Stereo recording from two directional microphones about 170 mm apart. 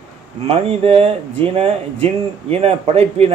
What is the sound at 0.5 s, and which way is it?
Speech, 35° right (ahead or behind).